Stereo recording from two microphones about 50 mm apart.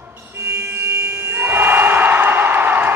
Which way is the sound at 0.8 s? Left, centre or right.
Right.